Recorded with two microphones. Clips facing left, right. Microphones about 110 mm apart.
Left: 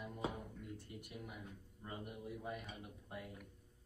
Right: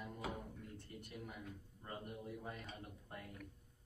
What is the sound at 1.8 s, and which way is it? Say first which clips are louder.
Speech: even; 10° left (ahead or behind).